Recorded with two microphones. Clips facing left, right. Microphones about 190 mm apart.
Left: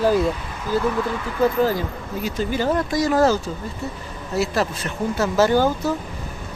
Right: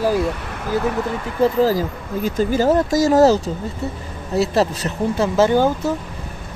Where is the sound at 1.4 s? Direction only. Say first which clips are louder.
Right 3 dB; 35° right (ahead or behind).